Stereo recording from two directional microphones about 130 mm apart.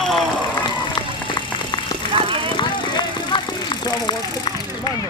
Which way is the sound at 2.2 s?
45° right (ahead or behind).